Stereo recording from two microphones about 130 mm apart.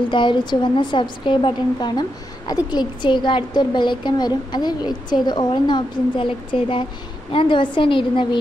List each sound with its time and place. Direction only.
0.1 s a woman's voice: 35° left (ahead or behind)